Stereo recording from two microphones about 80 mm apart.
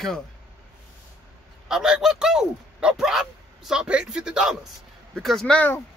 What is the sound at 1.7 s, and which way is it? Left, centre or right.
Speech, centre.